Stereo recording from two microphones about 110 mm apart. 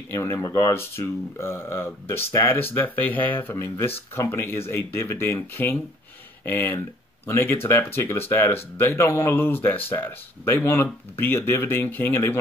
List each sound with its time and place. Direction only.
0.1 s speech: 25° left (ahead or behind)